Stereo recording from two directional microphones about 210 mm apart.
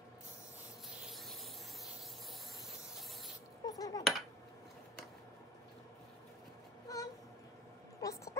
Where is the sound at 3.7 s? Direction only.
15° left (ahead or behind).